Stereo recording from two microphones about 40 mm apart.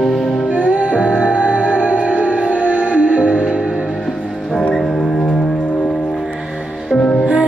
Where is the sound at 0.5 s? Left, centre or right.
Right.